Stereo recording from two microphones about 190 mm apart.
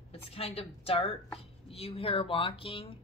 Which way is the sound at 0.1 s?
30° left (ahead or behind).